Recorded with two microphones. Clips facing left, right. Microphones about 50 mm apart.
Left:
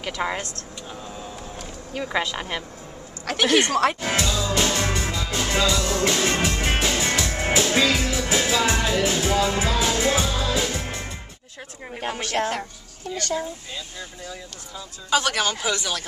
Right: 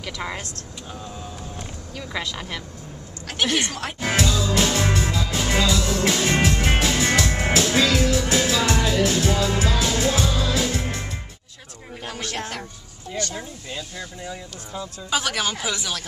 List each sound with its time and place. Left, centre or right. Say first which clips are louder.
0.2 s speech: left 5 dB; left
2.0 s speech: left 5 dB; left
3.4 s speech: left 4 dB; left
4.0 s speech: right 2 dB; centre
4.3 s music: right 1 dB; centre
7.5 s music: even; centre
12.0 s a woman's voice: left 3 dB; left
12.4 s speech: left 9 dB; centre
15.0 s speech: left 3 dB; centre